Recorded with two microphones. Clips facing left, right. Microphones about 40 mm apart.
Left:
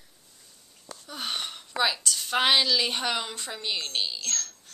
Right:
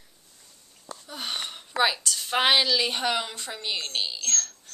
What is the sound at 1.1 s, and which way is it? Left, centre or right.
Wheeze, centre.